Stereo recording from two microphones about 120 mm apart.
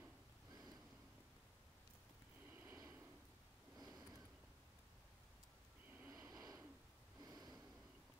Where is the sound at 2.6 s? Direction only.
25° right (ahead or behind).